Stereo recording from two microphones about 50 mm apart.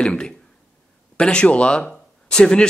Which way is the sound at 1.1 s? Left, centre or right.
Centre.